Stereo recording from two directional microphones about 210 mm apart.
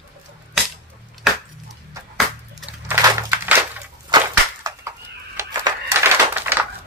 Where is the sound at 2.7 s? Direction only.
10° right (ahead or behind).